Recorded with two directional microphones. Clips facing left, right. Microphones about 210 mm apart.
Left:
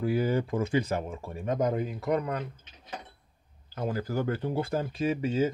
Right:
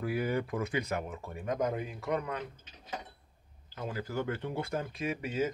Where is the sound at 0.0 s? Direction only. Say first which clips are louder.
Left 5 dB; 30° left (ahead or behind).